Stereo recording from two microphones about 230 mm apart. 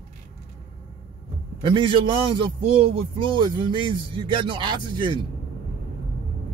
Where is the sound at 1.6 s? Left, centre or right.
Right.